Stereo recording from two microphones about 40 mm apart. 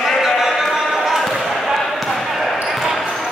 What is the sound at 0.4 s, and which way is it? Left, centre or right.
Basketball bounce, centre.